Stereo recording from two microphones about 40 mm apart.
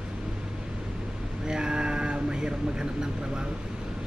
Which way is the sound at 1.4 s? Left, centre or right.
Right.